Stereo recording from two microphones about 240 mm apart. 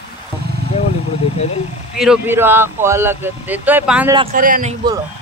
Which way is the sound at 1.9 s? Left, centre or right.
Centre.